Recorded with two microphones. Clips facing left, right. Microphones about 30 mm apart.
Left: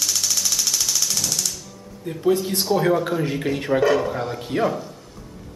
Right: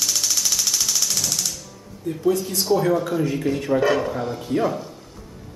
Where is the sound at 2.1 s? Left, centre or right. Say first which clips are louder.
Left 1 dB; left.